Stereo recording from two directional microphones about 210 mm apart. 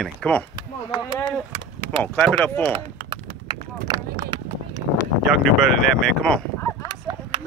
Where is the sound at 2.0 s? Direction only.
10° left (ahead or behind).